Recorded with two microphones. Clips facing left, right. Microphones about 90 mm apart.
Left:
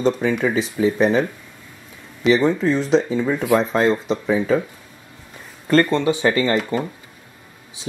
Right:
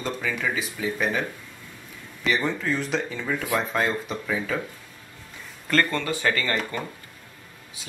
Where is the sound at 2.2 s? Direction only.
20° left (ahead or behind).